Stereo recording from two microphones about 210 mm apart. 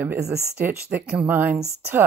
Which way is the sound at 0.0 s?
10° right (ahead or behind).